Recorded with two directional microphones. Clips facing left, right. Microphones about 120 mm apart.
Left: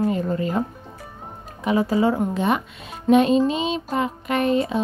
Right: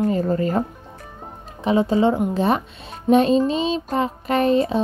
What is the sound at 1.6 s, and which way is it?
Speech, 25° right (ahead or behind).